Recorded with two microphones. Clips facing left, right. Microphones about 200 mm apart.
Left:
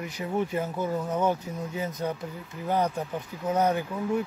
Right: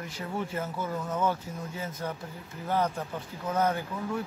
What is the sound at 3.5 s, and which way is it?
Speech, 15° left (ahead or behind).